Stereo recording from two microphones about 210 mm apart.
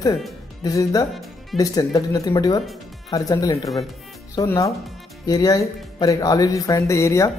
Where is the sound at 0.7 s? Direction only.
15° left (ahead or behind).